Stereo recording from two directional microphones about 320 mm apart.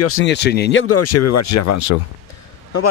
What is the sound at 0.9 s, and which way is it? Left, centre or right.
Speech, left.